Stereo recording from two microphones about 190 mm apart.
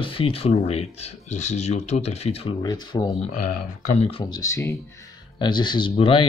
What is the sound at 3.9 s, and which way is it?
Speech, 35° left (ahead or behind).